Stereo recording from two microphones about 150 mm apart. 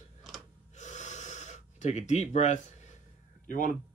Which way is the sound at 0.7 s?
50° left (ahead or behind).